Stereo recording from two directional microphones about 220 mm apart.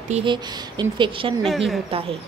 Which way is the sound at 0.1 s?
20° right (ahead or behind).